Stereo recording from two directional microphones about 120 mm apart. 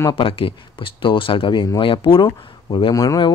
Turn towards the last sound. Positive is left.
turn(degrees=40)  # may be behind; listen again after turning